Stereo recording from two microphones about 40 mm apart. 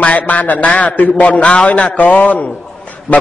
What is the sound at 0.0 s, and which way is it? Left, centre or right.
A man's voice, left.